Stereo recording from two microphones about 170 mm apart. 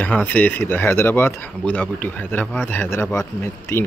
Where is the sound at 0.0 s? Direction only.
10° left (ahead or behind).